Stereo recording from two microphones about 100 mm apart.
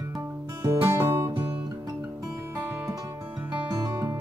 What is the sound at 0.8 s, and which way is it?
Music, 25° right (ahead or behind).